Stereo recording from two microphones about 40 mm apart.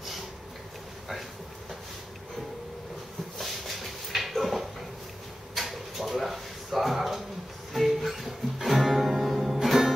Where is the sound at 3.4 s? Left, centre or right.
Centre.